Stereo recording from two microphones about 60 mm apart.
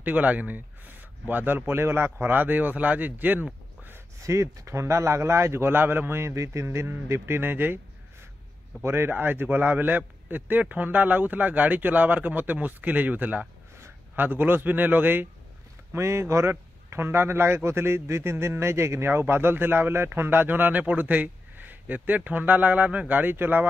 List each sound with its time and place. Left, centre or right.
0.0 s a man's voice: right
4.2 s a man's voice: right
6.3 s a man's voice: right
8.8 s a man's voice: right
15.9 s a man's voice: right